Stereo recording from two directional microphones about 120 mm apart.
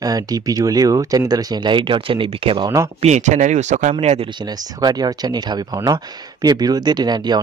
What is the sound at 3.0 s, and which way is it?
Speech, 85° right.